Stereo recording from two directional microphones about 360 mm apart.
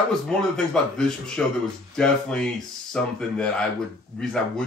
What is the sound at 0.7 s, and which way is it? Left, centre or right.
Speech, centre.